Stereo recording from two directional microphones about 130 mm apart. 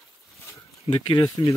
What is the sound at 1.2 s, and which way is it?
Speech, 25° left (ahead or behind).